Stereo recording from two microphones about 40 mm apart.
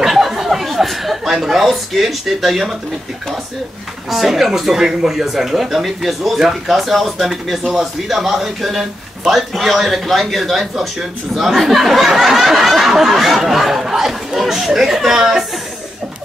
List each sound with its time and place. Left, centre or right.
0.0 s chuckle: centre
4.1 s speech: centre